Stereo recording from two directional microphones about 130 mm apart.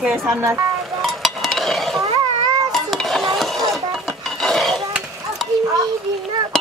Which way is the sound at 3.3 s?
Centre (ahead or behind).